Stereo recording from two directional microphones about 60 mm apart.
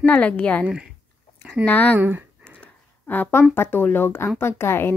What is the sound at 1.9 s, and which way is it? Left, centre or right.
Speech, right.